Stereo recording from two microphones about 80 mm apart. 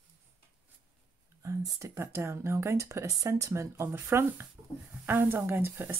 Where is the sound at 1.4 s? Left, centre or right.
Right.